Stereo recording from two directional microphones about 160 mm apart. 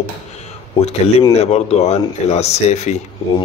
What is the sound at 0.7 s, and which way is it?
Speech, 40° left (ahead or behind).